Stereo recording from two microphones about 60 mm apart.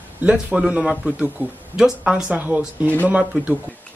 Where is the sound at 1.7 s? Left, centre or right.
Centre.